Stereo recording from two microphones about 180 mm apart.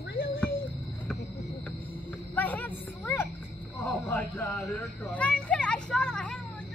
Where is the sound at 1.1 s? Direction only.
5° left (ahead or behind).